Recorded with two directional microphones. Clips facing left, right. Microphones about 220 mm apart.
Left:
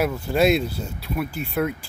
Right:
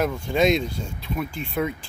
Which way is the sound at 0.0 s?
5° left (ahead or behind).